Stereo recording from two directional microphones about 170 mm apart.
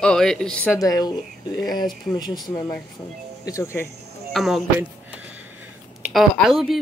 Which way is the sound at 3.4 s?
20° left (ahead or behind).